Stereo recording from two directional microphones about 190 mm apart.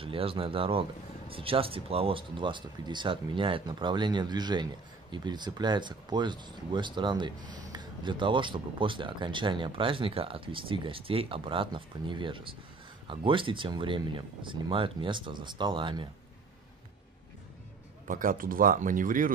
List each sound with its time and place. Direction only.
0.0 s speech: 30° right (ahead or behind)
18.0 s speech: 45° right (ahead or behind)